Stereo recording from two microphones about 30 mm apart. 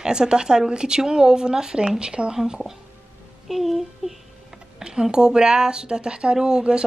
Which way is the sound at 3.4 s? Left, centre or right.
Centre.